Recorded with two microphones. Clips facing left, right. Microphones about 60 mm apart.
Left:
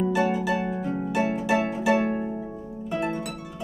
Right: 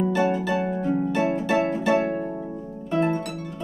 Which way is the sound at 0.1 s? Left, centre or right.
Centre.